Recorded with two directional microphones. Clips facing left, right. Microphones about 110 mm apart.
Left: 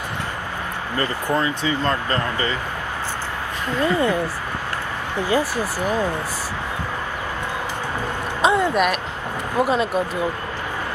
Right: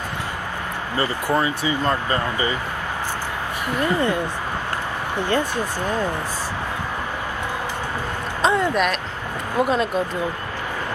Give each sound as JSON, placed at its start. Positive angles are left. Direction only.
{"t": 0.9, "sound": "speech", "side_deg": -15}
{"t": 3.8, "sound": "speech", "side_deg": 15}
{"t": 5.3, "sound": "speech", "side_deg": 5}
{"t": 8.4, "sound": "speech", "side_deg": 5}